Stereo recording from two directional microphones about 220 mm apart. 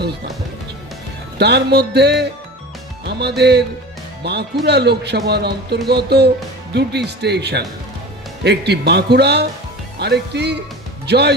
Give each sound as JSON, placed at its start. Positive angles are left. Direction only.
{"t": 1.4, "sound": "speech", "side_deg": -50}